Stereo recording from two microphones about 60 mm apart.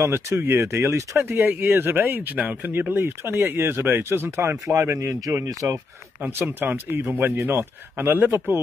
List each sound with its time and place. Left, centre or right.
0.0 s speech: right
0.6 s speech: right
5.4 s speech: right
6.3 s speech: right
7.3 s speech: right